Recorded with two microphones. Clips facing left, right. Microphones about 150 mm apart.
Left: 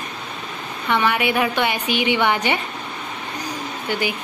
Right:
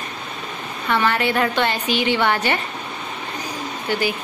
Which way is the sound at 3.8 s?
15° left (ahead or behind).